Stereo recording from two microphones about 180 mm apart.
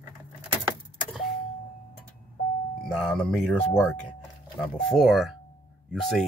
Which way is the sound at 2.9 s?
5° left (ahead or behind).